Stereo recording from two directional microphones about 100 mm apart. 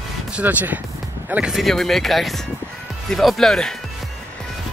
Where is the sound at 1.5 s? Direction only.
Centre (ahead or behind).